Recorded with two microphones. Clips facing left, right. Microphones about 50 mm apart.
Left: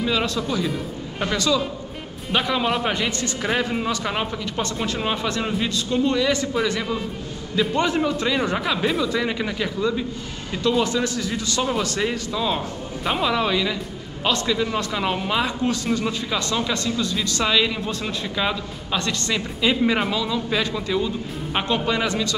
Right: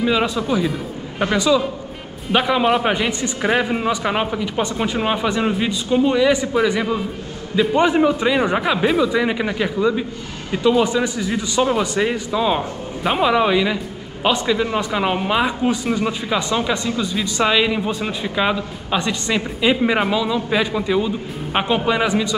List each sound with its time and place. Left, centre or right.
0.0 s a man's voice: centre